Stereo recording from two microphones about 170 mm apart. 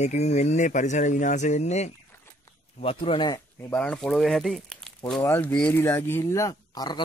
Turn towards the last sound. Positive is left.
turn(degrees=25)  # may be behind; listen again after turning